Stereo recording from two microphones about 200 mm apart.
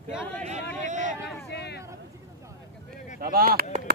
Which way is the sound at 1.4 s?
55° left (ahead or behind).